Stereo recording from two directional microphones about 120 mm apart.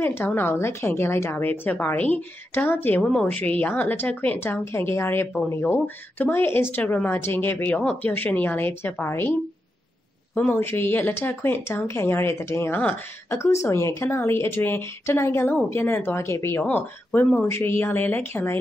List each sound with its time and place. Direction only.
0.0 s a woman's voice: 15° left (ahead or behind)
10.3 s a woman's voice: 15° left (ahead or behind)